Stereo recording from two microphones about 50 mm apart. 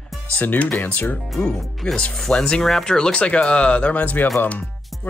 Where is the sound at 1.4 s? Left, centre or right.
Centre.